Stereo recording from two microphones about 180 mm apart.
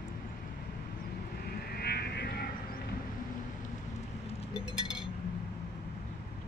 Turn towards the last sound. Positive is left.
turn(degrees=-5)  # may be behind; listen again after turning